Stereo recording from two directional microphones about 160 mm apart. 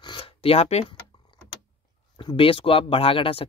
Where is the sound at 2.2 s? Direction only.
35° left (ahead or behind).